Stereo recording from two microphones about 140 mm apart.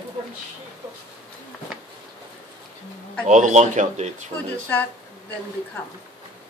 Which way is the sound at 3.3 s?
60° right (ahead or behind).